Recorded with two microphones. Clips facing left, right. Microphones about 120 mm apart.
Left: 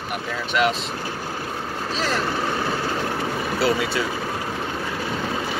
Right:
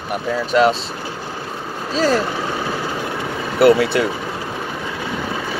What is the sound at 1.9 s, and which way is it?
Speech, 40° right (ahead or behind).